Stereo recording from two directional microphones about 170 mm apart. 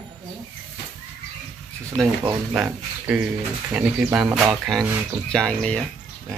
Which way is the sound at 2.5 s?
10° right (ahead or behind).